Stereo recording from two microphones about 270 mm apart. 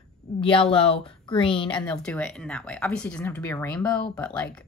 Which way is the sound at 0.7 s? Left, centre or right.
Centre.